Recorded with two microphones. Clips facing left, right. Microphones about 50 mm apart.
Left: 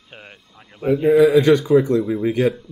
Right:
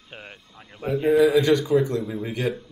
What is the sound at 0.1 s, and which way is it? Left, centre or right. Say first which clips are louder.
Speech: even; centre.